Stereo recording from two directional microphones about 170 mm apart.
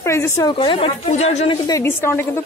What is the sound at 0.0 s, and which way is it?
A woman's voice, 15° left (ahead or behind).